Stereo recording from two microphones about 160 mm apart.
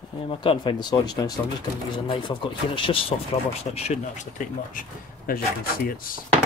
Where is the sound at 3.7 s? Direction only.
45° left (ahead or behind).